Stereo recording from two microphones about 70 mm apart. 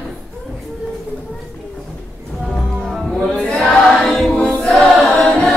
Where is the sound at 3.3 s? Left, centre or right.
Centre.